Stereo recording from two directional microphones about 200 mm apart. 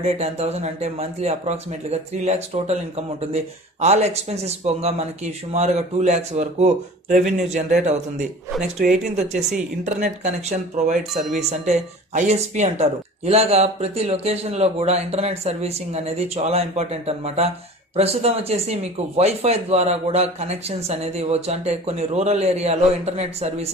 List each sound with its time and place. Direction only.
0.0 s speech: 30° right (ahead or behind)
8.5 s speech: centre (ahead or behind)
8.8 s speech: 35° right (ahead or behind)